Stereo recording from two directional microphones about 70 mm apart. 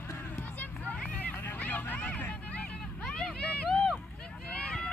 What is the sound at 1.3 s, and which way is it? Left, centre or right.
Vehicle, left.